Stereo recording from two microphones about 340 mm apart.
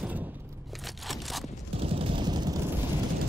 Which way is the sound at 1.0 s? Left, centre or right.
Centre.